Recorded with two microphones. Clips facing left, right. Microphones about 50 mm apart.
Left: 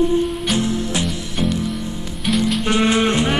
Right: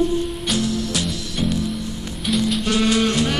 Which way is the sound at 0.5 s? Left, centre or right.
Left.